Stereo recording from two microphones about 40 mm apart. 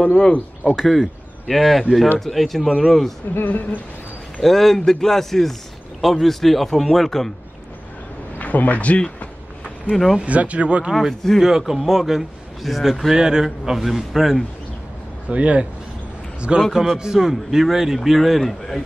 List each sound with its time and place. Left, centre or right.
0.0 s speech: centre
0.8 s a man's voice: centre
3.4 s speech: left
4.4 s a man's voice: centre
8.4 s speech: left
10.2 s speech: right
10.9 s a man's voice: centre
13.1 s a man's voice: centre
15.2 s a man's voice: right
17.0 s a man's voice: centre